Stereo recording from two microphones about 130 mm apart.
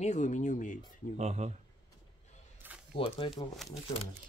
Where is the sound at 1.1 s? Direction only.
60° right (ahead or behind).